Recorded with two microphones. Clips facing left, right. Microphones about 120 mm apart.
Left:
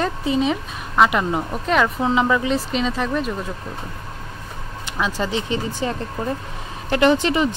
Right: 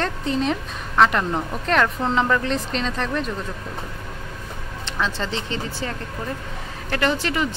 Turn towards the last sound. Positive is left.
turn(degrees=20)  # may be behind; listen again after turning